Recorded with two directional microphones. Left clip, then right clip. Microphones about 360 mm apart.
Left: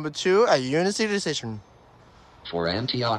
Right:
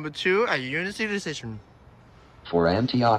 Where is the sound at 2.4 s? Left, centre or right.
Centre.